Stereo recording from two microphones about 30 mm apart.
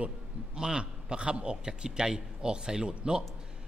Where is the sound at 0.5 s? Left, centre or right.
Right.